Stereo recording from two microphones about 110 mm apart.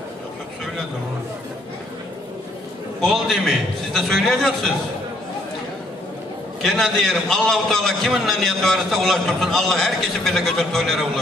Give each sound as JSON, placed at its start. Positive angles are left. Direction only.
{"t": 3.0, "sound": "a man's voice", "side_deg": 0}
{"t": 6.6, "sound": "a man's voice", "side_deg": 0}